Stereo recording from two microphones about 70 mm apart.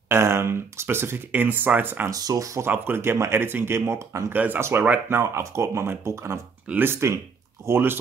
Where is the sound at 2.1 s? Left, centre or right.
Right.